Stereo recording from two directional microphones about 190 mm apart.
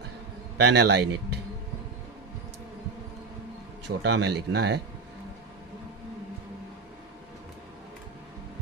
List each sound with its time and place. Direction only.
0.6 s speech: 60° right (ahead or behind)
3.8 s speech: 65° right (ahead or behind)